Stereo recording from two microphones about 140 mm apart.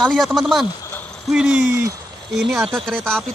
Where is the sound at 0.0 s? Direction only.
Centre (ahead or behind).